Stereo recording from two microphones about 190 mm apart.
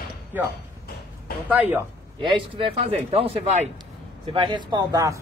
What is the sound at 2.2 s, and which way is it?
Speech, 25° right (ahead or behind).